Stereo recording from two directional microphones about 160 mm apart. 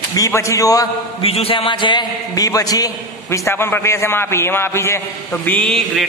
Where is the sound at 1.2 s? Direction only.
35° left (ahead or behind).